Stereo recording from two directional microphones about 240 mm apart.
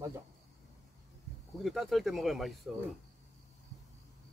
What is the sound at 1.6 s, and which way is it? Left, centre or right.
Speech, centre.